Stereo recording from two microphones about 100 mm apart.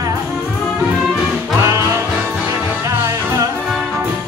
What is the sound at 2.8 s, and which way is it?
Music, 30° right (ahead or behind).